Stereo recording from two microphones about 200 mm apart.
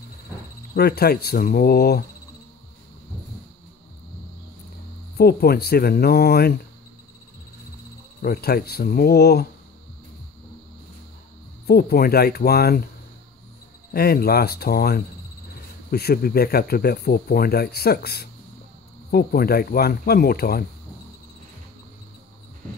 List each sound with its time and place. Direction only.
0.7 s speech: 50° left (ahead or behind)
5.1 s speech: 50° left (ahead or behind)
8.2 s speech: 50° left (ahead or behind)
11.6 s speech: 50° left (ahead or behind)
13.9 s speech: 50° left (ahead or behind)